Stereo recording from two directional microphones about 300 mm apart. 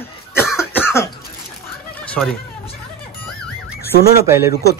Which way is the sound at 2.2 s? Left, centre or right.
Centre.